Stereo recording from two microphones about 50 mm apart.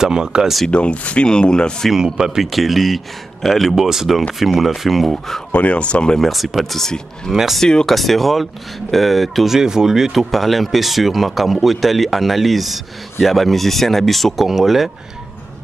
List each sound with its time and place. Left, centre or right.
0.0 s speech: centre
0.7 s speech: left
1.9 s speech: centre
5.5 s speech: left
6.1 s speech: centre
7.6 s speech: centre
9.6 s speech: centre